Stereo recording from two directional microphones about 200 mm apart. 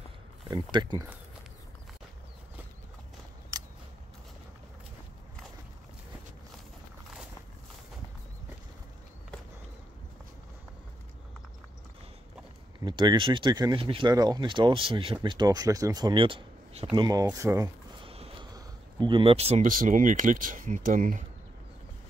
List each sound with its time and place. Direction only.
0.5 s speech: 20° right (ahead or behind)
3.5 s a sound: 20° right (ahead or behind)
12.8 s speech: 25° right (ahead or behind)
18.0 s speech: 30° right (ahead or behind)